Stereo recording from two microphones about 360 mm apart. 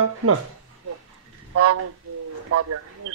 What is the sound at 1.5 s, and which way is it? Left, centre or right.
Speech, right.